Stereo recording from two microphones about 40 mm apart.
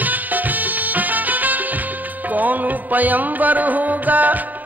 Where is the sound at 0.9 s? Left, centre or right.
Right.